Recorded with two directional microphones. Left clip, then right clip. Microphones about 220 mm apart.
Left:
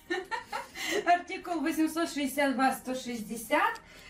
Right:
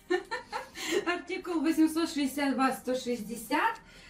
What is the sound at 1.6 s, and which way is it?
Speech, 10° left (ahead or behind).